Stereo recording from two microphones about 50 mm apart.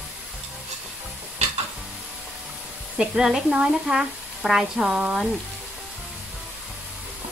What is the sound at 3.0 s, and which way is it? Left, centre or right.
Speech, centre.